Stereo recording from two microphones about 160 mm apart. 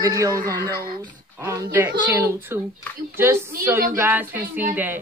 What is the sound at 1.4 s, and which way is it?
A child's voice, 15° right (ahead or behind).